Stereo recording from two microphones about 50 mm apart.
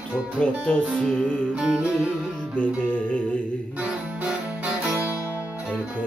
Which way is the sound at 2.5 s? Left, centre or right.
Left.